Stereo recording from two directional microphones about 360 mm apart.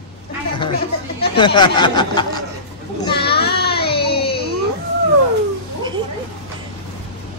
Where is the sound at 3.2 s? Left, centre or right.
Left.